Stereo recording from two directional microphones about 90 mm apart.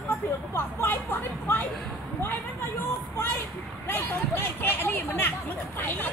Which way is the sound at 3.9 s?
25° left (ahead or behind).